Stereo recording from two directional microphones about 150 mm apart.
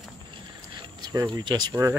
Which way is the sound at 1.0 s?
25° right (ahead or behind).